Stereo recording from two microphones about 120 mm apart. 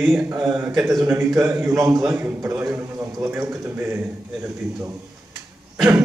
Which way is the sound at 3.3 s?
20° right (ahead or behind).